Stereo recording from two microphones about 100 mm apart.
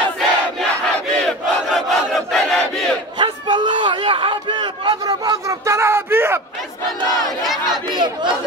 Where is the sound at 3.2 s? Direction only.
50° right (ahead or behind); by 6.3 s 25° right (ahead or behind).